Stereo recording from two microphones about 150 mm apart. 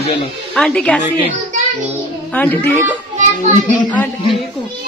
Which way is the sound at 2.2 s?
10° left (ahead or behind).